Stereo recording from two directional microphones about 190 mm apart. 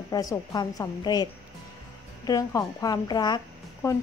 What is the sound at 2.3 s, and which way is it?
A woman's voice, 20° left (ahead or behind).